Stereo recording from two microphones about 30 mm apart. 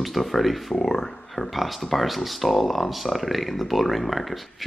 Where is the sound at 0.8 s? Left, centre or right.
Centre.